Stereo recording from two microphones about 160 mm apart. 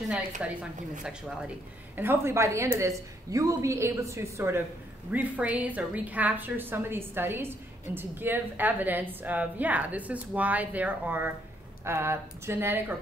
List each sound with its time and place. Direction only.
0.4 s a woman's voice: 5° right (ahead or behind)
2.0 s a woman's voice: 15° right (ahead or behind)